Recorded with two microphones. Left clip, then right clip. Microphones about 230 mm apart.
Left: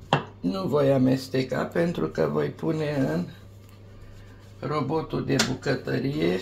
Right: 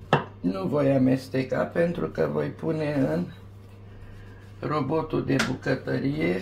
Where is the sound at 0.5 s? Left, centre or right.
Left.